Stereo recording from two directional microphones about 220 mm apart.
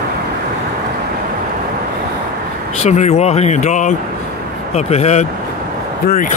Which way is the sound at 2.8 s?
30° left (ahead or behind).